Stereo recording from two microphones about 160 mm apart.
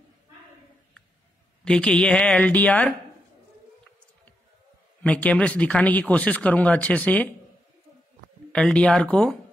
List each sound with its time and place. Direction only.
1.6 s speech: 5° left (ahead or behind)
5.0 s speech: 10° left (ahead or behind)
8.5 s speech: 5° left (ahead or behind)